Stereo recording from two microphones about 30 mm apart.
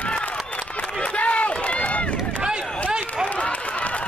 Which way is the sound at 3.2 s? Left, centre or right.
Left.